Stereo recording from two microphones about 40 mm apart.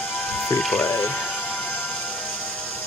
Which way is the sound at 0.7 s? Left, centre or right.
Left.